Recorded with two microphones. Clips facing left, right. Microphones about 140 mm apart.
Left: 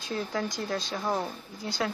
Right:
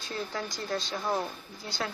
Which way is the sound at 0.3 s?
Centre (ahead or behind).